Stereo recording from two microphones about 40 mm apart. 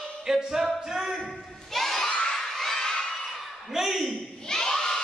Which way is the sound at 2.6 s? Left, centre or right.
Centre.